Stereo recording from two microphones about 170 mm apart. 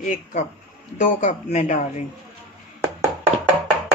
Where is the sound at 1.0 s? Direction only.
45° left (ahead or behind).